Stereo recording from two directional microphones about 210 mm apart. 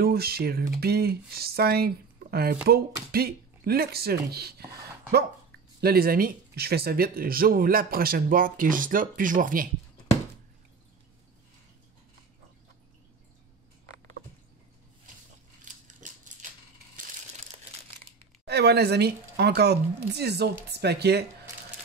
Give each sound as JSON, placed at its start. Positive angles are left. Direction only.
{"t": 0.0, "sound": "speech", "side_deg": -45}
{"t": 15.6, "sound": "crushing", "side_deg": -35}
{"t": 18.4, "sound": "speech", "side_deg": -50}